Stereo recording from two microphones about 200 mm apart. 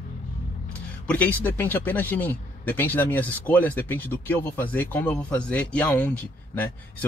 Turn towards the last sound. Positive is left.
turn(degrees=10)  # may be behind; listen again after turning